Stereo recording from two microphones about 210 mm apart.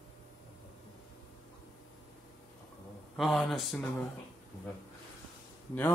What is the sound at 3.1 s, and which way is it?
Speech, centre (ahead or behind).